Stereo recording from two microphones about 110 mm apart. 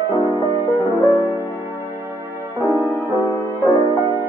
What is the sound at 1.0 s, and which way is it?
Music, 20° left (ahead or behind).